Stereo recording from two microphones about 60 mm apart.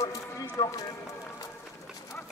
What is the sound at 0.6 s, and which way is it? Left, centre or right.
Speech, left.